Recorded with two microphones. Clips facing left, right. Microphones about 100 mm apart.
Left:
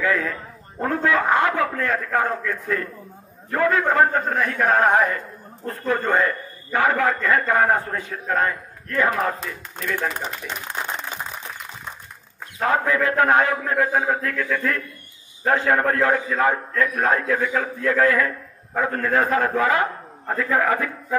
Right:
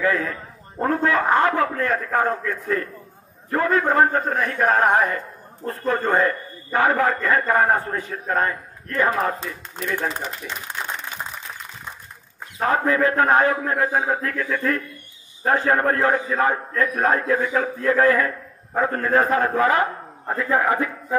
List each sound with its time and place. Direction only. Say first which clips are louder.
0.0 s a man's voice: right 1 dB; 35° right (ahead or behind)
12.5 s a man's voice: right 1 dB; 35° right (ahead or behind)
20.2 s a man's voice: even; 20° right (ahead or behind)